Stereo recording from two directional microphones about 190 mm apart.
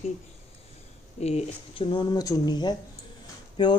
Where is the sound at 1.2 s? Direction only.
35° left (ahead or behind).